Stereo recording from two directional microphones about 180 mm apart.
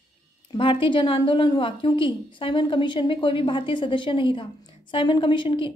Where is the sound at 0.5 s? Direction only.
30° left (ahead or behind).